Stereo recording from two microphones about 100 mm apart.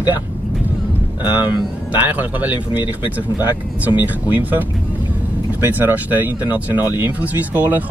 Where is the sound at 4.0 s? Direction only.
15° right (ahead or behind).